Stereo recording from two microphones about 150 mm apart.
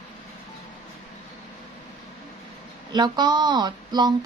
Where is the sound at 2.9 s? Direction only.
30° right (ahead or behind).